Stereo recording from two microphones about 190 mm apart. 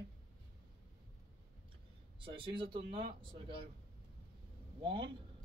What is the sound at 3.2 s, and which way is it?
Speech, 25° right (ahead or behind).